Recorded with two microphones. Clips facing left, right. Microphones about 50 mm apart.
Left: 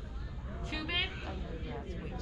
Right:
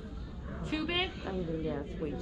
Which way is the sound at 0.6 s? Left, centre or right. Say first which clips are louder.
Right 3 dB; centre.